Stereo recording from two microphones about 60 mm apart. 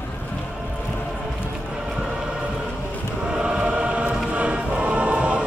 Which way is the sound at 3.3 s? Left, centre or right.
Centre.